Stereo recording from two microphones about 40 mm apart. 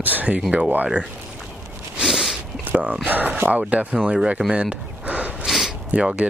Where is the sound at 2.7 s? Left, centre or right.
Right.